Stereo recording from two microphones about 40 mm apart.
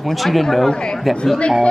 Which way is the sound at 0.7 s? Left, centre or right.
Centre.